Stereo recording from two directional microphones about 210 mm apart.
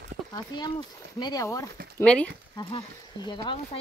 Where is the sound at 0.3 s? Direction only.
20° left (ahead or behind).